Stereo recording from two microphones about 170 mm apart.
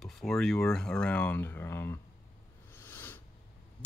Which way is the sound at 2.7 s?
10° left (ahead or behind).